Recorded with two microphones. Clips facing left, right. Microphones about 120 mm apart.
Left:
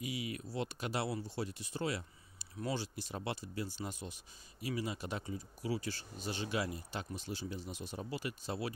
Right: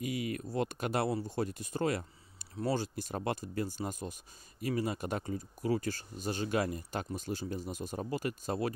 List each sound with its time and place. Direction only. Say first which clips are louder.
0.0 s speech: right 5 dB; 50° right (ahead or behind)